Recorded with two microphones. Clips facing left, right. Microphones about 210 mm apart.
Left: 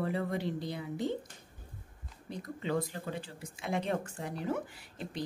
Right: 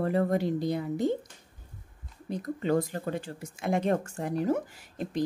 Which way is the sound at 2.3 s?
45° right (ahead or behind).